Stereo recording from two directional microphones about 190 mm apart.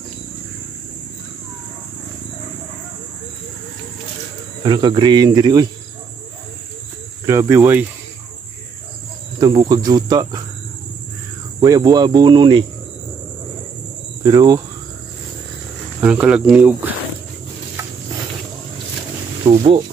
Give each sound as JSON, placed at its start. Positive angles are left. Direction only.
{"t": 4.6, "sound": "speech", "side_deg": -25}
{"t": 7.2, "sound": "speech", "side_deg": -15}
{"t": 9.4, "sound": "speech", "side_deg": -20}
{"t": 11.6, "sound": "speech", "side_deg": -20}
{"t": 14.2, "sound": "speech", "side_deg": -20}
{"t": 16.0, "sound": "speech", "side_deg": -5}
{"t": 19.4, "sound": "speech", "side_deg": -30}